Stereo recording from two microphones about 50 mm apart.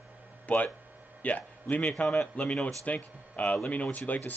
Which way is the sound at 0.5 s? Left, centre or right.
Left.